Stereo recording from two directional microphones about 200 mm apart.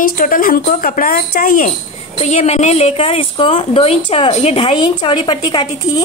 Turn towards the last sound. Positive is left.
turn(degrees=25)  # may be behind; listen again after turning